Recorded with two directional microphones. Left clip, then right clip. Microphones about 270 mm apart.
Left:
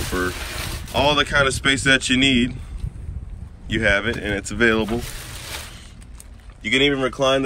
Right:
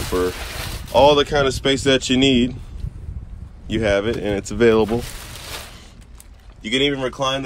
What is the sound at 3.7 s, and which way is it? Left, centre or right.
Speech, centre.